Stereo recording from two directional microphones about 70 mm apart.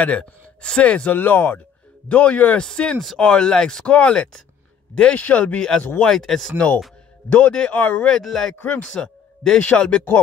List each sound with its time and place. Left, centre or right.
0.0 s speech: centre
3.0 s speech: centre
7.2 s speech: left
7.8 s speech: left
8.1 s speech: centre
8.5 s speech: left
8.9 s speech: centre